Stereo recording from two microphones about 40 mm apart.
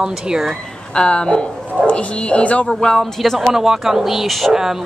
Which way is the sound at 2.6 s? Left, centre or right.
Centre.